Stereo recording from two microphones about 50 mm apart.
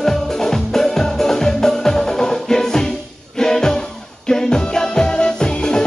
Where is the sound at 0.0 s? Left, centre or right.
Centre.